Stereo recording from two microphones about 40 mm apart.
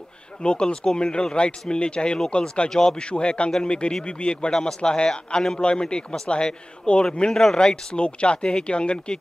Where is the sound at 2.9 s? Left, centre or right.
Left.